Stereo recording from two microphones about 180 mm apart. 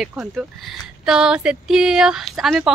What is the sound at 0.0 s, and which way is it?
Speech, centre (ahead or behind).